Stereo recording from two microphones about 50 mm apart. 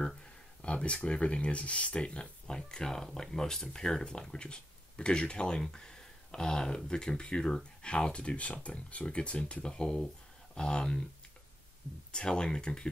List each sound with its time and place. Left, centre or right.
0.6 s speech: left
12.1 s speech: centre